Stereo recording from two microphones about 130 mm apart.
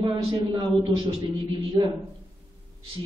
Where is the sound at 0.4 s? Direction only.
40° right (ahead or behind).